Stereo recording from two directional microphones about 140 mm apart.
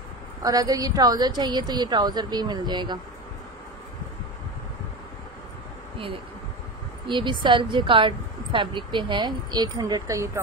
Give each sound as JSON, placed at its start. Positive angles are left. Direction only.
{"t": 0.4, "sound": "a woman's voice", "side_deg": -25}
{"t": 7.1, "sound": "a woman's voice", "side_deg": -35}